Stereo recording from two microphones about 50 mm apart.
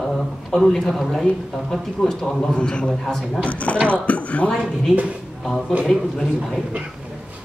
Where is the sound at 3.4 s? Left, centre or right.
Left.